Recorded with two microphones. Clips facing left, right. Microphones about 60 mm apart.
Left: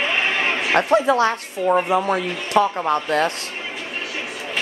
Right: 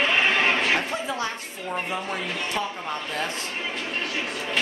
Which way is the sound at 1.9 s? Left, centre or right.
Left.